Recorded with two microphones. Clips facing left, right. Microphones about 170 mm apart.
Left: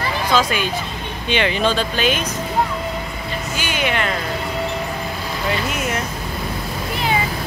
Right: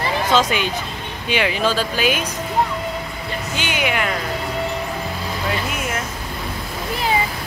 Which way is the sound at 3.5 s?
15° right (ahead or behind).